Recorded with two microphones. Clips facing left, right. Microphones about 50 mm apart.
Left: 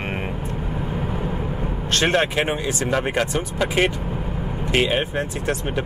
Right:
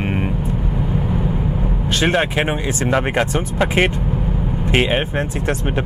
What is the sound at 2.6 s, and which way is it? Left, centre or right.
Speech, right.